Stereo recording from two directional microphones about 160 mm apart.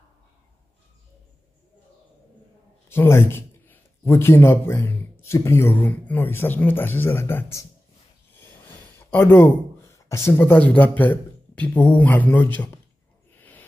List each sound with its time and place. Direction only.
2.9 s a man's voice: 15° left (ahead or behind)
9.1 s speech: 15° left (ahead or behind)
13.3 s owl: 10° left (ahead or behind)